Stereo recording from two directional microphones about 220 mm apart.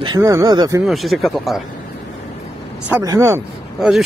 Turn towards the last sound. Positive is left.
turn(degrees=0)  # may be behind; listen again after turning